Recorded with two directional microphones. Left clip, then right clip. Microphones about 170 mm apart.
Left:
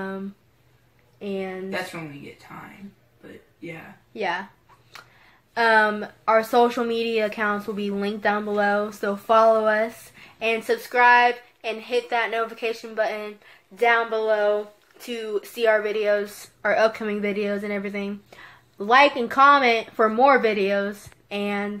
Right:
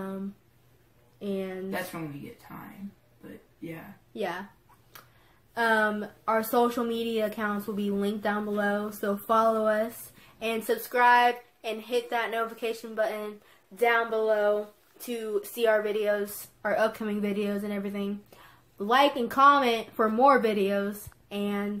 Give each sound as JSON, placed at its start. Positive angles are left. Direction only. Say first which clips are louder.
{"t": 1.2, "sound": "speech", "louder": "left 4 dB", "side_deg": 25}
{"t": 4.1, "sound": "speech", "louder": "left 7 dB", "side_deg": 20}
{"t": 5.5, "sound": "speech", "louder": "left 7 dB", "side_deg": 20}